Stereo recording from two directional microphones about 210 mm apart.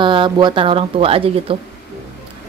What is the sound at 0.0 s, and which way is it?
Speech, 25° right (ahead or behind).